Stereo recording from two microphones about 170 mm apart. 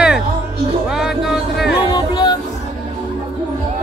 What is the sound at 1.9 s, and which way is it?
Music, 25° left (ahead or behind).